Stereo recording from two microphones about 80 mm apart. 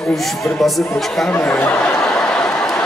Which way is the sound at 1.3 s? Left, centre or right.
Left.